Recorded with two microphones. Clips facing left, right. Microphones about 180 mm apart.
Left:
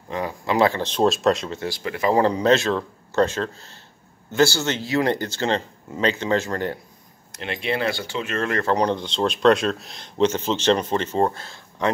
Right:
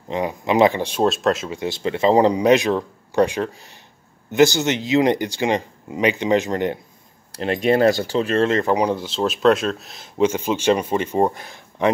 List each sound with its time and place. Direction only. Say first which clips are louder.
0.1 s speech: right 4 dB; 20° right (ahead or behind); by 1.6 s 5° right (ahead or behind)
1.6 s speech: right 5 dB; 25° right (ahead or behind)
7.3 s speech: right 8 dB; 40° right (ahead or behind); by 8.7 s 20° right (ahead or behind)
8.7 s speech: right 1 dB; 5° right (ahead or behind)